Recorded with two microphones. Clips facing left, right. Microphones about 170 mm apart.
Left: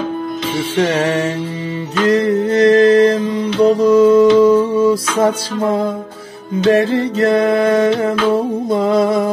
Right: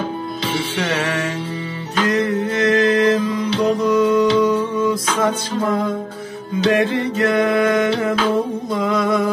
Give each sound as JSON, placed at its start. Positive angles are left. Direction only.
{"t": 0.7, "sound": "music", "side_deg": 35}
{"t": 2.0, "sound": "mantra", "side_deg": 30}
{"t": 6.7, "sound": "music", "side_deg": 30}